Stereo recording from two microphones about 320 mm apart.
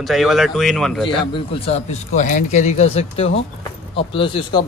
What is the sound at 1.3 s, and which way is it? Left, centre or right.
Speech, centre.